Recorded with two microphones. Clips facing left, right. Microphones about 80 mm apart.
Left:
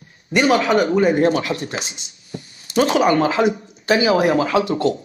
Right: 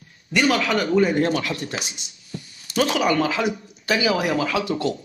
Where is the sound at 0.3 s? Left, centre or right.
Left.